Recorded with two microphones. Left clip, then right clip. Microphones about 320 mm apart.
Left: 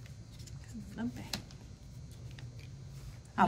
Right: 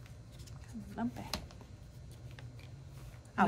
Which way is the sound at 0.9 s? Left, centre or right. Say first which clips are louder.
Right 1 dB; centre.